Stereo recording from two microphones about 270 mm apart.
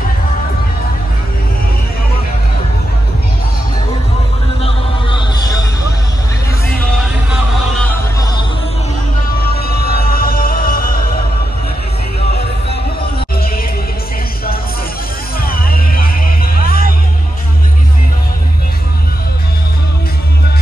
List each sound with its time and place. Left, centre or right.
9.3 s music: left
13.0 s heart murmur: left
15.4 s music: left